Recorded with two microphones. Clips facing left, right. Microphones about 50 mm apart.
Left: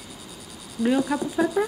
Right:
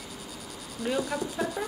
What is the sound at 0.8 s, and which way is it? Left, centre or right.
Speech, left.